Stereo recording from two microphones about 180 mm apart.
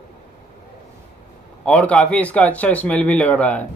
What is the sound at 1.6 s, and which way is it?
A man's voice, 5° left (ahead or behind).